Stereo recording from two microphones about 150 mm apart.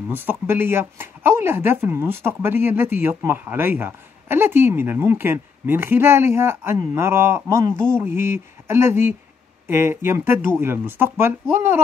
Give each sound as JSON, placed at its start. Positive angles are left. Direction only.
{"t": 0.1, "sound": "speech", "side_deg": -15}